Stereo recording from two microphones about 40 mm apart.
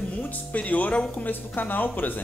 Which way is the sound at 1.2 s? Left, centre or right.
Left.